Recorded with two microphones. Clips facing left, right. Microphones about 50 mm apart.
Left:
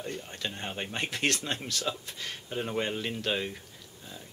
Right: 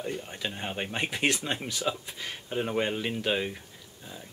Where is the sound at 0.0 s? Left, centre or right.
Centre.